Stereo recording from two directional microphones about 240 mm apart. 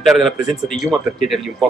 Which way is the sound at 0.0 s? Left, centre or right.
Centre.